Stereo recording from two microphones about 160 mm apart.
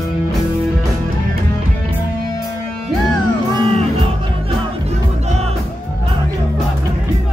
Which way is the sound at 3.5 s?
40° right (ahead or behind).